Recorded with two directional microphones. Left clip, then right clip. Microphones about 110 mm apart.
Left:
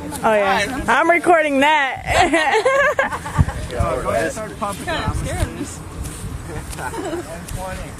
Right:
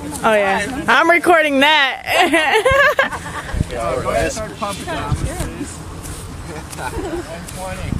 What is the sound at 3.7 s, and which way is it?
Speech, 5° right (ahead or behind).